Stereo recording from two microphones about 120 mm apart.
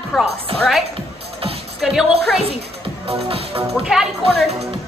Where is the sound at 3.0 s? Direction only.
50° right (ahead or behind).